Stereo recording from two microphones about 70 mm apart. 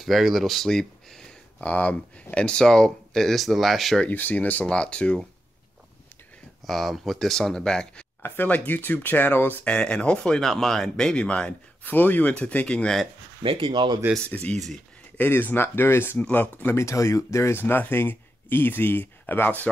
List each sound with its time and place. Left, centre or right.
0.0 s speech: centre
1.6 s speech: left; by 4.0 s centre
4.0 s speech: left
6.6 s speech: centre
8.2 s speech: left
9.7 s speech: centre
14.2 s speech: centre
16.7 s speech: left